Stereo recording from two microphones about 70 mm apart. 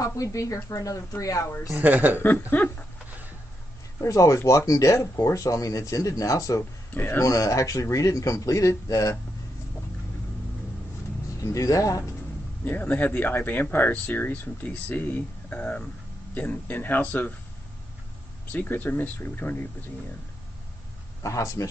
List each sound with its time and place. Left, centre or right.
0.0 s speech: left
1.7 s speech: right
2.1 s speech: left
3.1 s a sound: right
4.0 s speech: left
6.9 s speech: left
7.2 s speech: left
11.3 s speech: left
12.6 s speech: left
18.5 s speech: left
21.2 s speech: left